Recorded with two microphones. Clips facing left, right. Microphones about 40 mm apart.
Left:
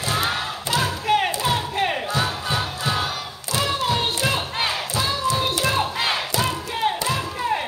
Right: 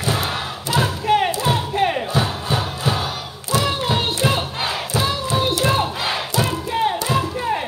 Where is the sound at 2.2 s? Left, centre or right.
Centre.